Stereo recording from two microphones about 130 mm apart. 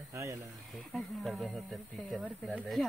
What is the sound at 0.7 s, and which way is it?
Speech, centre (ahead or behind).